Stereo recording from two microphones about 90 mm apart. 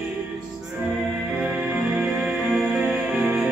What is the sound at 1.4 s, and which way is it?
Music, 15° right (ahead or behind).